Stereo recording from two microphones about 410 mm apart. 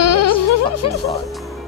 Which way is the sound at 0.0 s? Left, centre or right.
Left.